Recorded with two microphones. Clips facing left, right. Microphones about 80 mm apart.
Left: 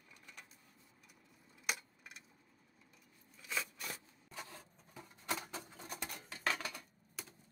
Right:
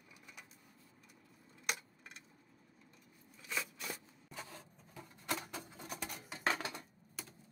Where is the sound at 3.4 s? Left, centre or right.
Centre.